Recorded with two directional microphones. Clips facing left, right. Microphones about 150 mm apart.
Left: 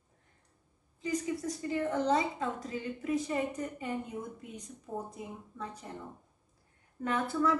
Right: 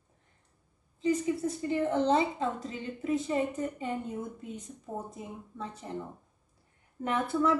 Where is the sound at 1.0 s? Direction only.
25° right (ahead or behind).